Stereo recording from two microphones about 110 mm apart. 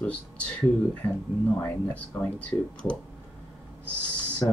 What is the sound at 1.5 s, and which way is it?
Speech, 15° left (ahead or behind).